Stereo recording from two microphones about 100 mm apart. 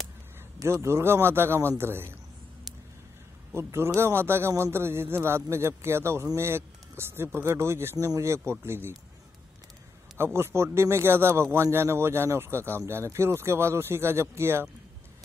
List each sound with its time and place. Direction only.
0.7 s a man's voice: 25° right (ahead or behind)
3.5 s a man's voice: 25° right (ahead or behind)
10.1 s a man's voice: 25° right (ahead or behind)